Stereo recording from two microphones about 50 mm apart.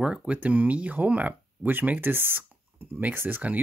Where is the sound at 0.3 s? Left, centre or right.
Right.